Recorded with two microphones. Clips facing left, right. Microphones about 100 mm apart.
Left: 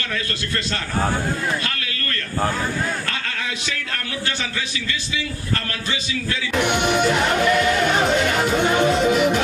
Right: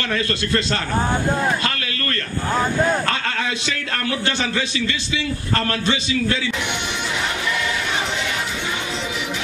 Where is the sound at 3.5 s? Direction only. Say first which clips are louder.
Right 3 dB; 35° right (ahead or behind).